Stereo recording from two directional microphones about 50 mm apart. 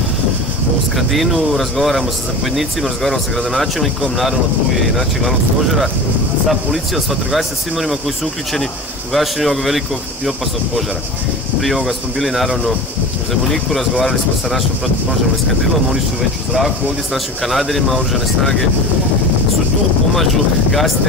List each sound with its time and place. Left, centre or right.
0.9 s speech: centre
6.5 s speech: centre
9.1 s speech: centre
11.6 s speech: centre
16.5 s speech: centre